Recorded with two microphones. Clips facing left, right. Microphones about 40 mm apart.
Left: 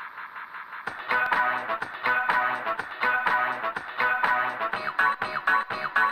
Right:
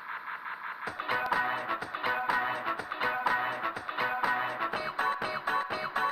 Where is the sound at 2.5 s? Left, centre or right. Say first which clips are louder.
Left 4 dB; left.